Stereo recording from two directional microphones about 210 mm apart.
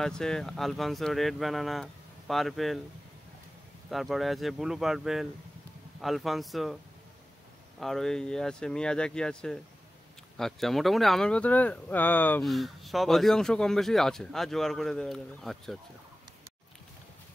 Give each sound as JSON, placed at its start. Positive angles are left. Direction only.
{"t": 0.0, "sound": "speech", "side_deg": 5}
{"t": 3.9, "sound": "speech", "side_deg": 0}
{"t": 7.8, "sound": "speech", "side_deg": 0}